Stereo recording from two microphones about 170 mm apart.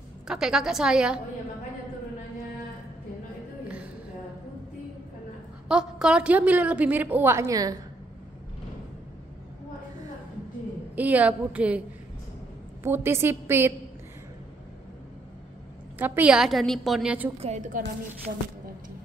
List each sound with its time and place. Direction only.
0.3 s a woman's voice: 5° right (ahead or behind)
5.7 s a woman's voice: 5° right (ahead or behind); by 7.7 s 20° right (ahead or behind)
11.0 s a woman's voice: 10° right (ahead or behind)
12.8 s a woman's voice: 15° right (ahead or behind)
16.0 s a woman's voice: 10° right (ahead or behind)
17.4 s a woman's voice: 40° right (ahead or behind)